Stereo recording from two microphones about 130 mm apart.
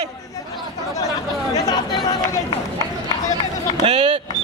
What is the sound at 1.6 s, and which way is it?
Speech, 30° left (ahead or behind).